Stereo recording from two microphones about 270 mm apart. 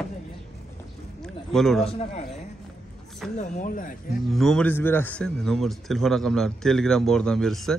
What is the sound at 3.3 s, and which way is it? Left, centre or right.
Speech, left.